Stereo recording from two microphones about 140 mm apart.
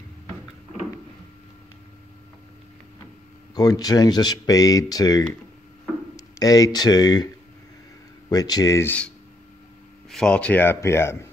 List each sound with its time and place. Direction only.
3.5 s speech: 25° left (ahead or behind)
8.3 s speech: 25° left (ahead or behind)
10.0 s speech: 5° left (ahead or behind)